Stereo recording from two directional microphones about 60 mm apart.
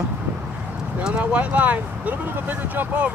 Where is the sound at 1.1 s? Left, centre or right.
Right.